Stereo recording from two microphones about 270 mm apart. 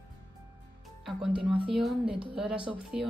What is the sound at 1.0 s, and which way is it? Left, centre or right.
A woman's voice, centre.